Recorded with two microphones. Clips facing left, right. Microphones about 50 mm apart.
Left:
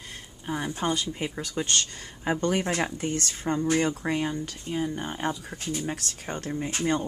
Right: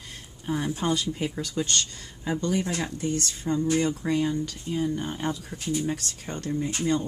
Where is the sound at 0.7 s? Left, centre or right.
Centre.